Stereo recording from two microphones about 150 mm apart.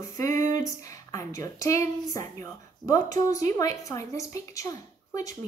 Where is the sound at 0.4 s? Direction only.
20° left (ahead or behind).